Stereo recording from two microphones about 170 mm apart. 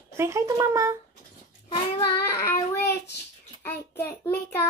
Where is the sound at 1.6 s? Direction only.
20° left (ahead or behind).